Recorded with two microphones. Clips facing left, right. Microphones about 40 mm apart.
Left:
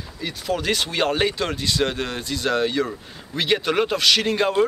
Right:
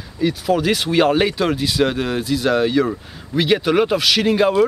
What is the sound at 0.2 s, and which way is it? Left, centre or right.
Speech, centre.